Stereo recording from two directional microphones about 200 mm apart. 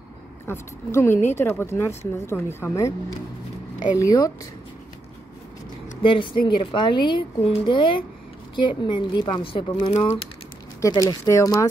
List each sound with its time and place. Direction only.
0.5 s speech: 10° left (ahead or behind)
4.0 s speech: 20° left (ahead or behind)
6.0 s a woman's voice: 25° left (ahead or behind)
10.8 s speech: 20° left (ahead or behind)